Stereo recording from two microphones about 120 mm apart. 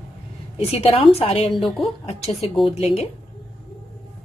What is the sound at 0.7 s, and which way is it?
Speech, 55° left (ahead or behind).